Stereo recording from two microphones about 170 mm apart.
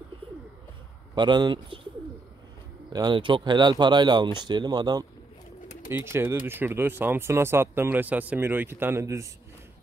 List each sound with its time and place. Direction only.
1.1 s speech: 25° right (ahead or behind)
2.9 s speech: 25° right (ahead or behind)
5.9 s speech: 15° right (ahead or behind)